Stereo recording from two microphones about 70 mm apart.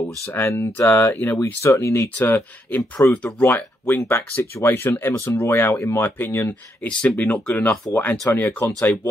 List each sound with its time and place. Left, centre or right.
0.3 s speech: left
1.4 s speech: left
2.1 s speech: left
6.9 s speech: centre